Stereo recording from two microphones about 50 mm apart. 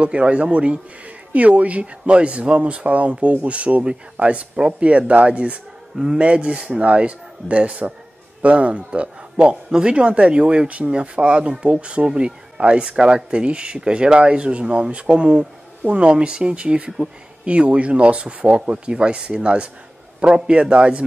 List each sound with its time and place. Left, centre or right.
0.0 s speech: right